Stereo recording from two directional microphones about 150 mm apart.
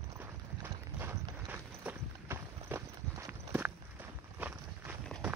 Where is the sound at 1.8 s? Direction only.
15° right (ahead or behind).